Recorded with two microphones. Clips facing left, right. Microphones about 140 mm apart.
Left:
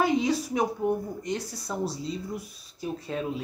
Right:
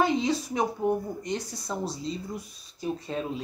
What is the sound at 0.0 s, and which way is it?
Speech, 10° left (ahead or behind).